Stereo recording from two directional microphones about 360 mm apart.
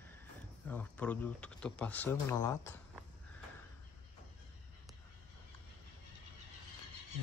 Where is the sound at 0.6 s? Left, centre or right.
Centre.